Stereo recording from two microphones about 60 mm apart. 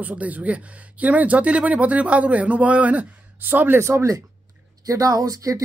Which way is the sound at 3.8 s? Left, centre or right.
Right.